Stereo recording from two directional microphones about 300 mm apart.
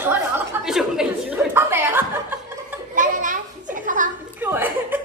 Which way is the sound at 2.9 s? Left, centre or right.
Right.